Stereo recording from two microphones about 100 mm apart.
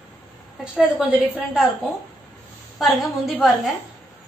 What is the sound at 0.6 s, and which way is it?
Speech, 5° right (ahead or behind).